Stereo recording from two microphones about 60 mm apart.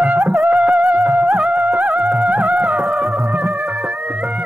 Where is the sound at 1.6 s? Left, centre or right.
Right.